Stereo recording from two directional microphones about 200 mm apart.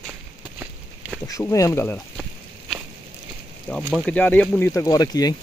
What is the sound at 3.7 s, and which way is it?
Speech, 5° left (ahead or behind).